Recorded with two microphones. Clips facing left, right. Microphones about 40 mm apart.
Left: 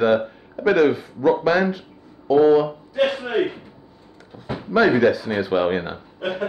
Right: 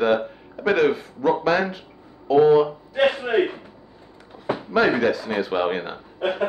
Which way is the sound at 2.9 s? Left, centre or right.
Right.